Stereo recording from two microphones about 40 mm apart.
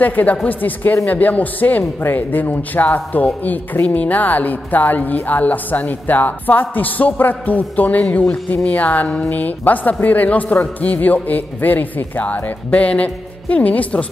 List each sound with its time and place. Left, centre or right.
0.0 s a woman's voice: left